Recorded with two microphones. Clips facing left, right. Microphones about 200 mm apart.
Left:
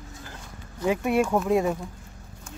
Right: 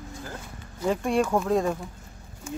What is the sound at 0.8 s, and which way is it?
Speech, 5° left (ahead or behind).